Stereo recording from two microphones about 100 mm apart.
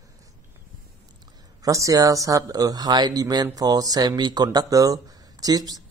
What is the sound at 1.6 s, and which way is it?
Speech, 35° right (ahead or behind).